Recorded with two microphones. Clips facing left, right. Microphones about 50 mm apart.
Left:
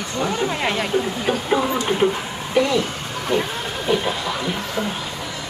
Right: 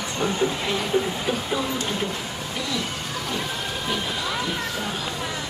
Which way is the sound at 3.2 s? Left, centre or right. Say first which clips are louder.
Left 9 dB; left.